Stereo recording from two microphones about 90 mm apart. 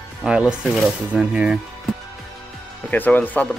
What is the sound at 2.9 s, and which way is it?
Speech, 20° left (ahead or behind).